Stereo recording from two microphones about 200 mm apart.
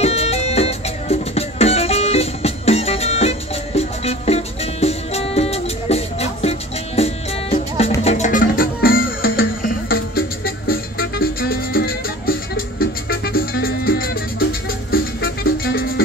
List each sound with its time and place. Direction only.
0.0 s music: 30° left (ahead or behind); by 15.8 s 45° left (ahead or behind)